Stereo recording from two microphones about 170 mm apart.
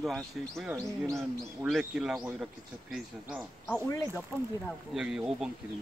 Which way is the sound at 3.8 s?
15° left (ahead or behind).